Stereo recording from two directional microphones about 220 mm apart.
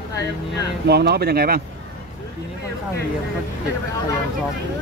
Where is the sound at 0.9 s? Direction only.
45° right (ahead or behind).